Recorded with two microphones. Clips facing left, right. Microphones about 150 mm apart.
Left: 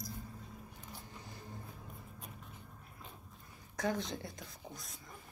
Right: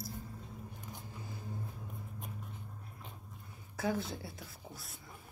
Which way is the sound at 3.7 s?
5° right (ahead or behind).